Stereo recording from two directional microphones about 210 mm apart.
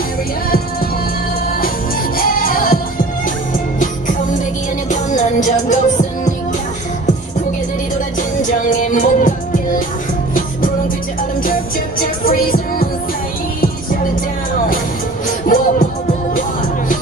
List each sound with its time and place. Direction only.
2.1 s music: 40° left (ahead or behind)
3.8 s music: 35° left (ahead or behind)
8.2 s music: 35° left (ahead or behind)
12.0 s music: 45° left (ahead or behind)
15.2 s music: 40° left (ahead or behind)